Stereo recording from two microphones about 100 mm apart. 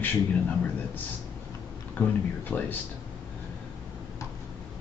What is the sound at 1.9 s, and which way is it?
Speech, 15° left (ahead or behind).